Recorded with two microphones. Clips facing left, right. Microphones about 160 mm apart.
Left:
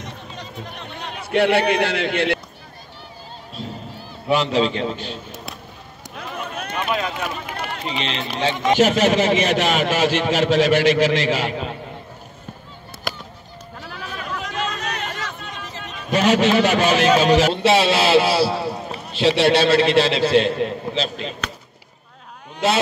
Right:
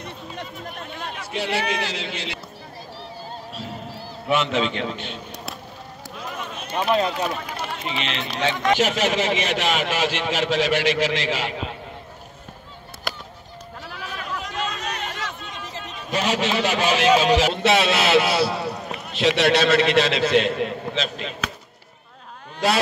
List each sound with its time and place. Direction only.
1.2 s a man's voice: 60° left (ahead or behind)
4.3 s a man's voice: 35° left (ahead or behind)
5.3 s a sound: centre (ahead or behind)
6.1 s run: 65° left (ahead or behind)
6.9 s speech: 35° right (ahead or behind)
7.2 s speech: centre (ahead or behind)
7.6 s run: centre (ahead or behind)
8.4 s speech: 25° left (ahead or behind)
8.7 s a man's voice: centre (ahead or behind)
13.1 s honk: centre (ahead or behind)
13.8 s chatter: centre (ahead or behind)
17.6 s a man's voice: 30° left (ahead or behind)
18.5 s a sound: centre (ahead or behind)
18.9 s a man's voice: 35° left (ahead or behind)